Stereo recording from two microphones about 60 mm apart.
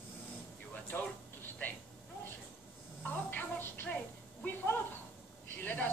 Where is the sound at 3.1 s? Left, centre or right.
Left.